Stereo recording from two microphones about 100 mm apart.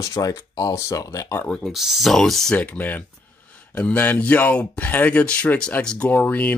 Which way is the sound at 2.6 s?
15° left (ahead or behind).